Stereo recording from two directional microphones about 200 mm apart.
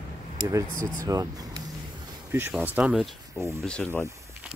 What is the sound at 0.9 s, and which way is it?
Speech, 15° right (ahead or behind).